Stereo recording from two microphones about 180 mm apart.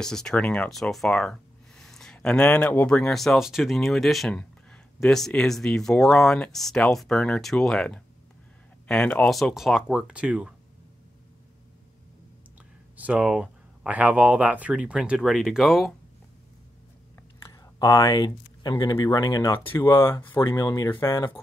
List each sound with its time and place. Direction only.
0.0 s speech: 5° left (ahead or behind)
12.9 s speech: 10° right (ahead or behind)
17.5 s speech: 20° left (ahead or behind)
19.7 s speech: 10° left (ahead or behind)
20.0 s speech: 25° left (ahead or behind)